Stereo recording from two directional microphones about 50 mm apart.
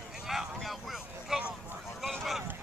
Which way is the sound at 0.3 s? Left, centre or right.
Centre.